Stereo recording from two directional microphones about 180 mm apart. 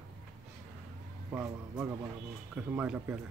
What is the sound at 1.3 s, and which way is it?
Speech, 10° right (ahead or behind).